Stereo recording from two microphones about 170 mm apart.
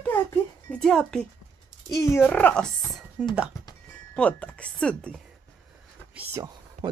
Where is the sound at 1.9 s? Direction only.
15° left (ahead or behind).